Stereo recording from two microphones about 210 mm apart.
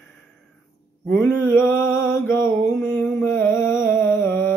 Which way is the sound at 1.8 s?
10° left (ahead or behind).